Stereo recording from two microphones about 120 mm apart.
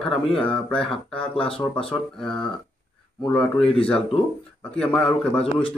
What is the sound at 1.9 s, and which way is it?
Speech, 5° left (ahead or behind).